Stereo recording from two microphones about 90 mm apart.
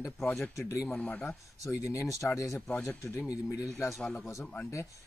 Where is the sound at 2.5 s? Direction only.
20° left (ahead or behind).